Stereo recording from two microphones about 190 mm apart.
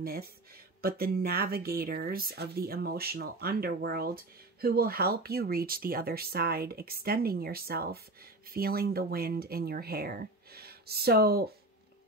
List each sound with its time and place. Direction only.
0.0 s speech: 50° right (ahead or behind)